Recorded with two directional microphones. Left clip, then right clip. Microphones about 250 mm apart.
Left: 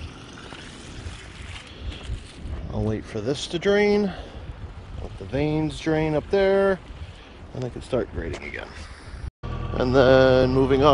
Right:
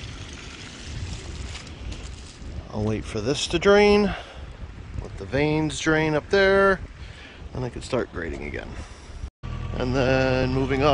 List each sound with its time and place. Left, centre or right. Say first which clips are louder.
2.7 s speech: right 1 dB; centre
5.3 s speech: right 2 dB; centre
9.8 s speech: left 6 dB; centre